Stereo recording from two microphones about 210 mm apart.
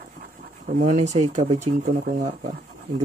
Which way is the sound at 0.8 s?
30° right (ahead or behind).